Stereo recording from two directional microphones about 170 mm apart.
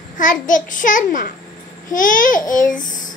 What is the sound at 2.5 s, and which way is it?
Speech, 50° left (ahead or behind).